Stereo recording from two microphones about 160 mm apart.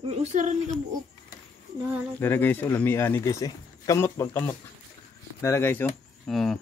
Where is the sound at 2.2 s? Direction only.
10° left (ahead or behind).